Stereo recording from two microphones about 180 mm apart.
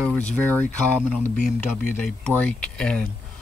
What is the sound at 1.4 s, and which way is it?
Speech, 45° left (ahead or behind).